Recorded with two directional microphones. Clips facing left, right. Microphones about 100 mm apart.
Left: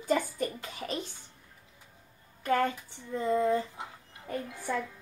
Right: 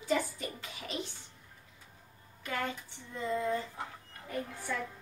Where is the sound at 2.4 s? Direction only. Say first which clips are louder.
Left 9 dB; 45° left (ahead or behind).